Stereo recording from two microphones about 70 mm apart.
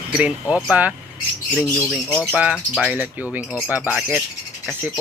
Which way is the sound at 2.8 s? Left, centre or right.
Centre.